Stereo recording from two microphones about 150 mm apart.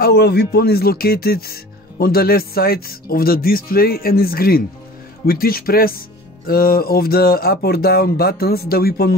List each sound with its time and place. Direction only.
0.0 s speech: 90° left